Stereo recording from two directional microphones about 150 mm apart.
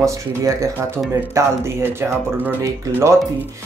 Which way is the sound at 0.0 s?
20° right (ahead or behind).